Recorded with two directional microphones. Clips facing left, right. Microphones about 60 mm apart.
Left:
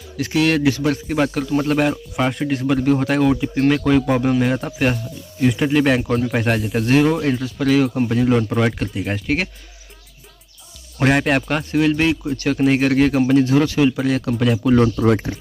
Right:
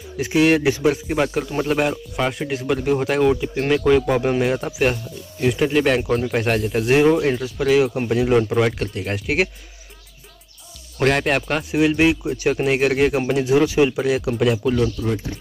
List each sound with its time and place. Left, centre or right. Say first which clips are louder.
0.2 s a man's voice: right 1 dB; centre
0.9 s a man's voice: left 1 dB; centre
8.5 s speech: even; centre
11.0 s speech: left 2 dB; centre
11.7 s a man's voice: right 1 dB; centre
15.0 s speech: left 8 dB; left